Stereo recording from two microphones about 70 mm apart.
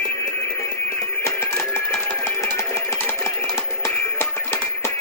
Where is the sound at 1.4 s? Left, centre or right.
Left.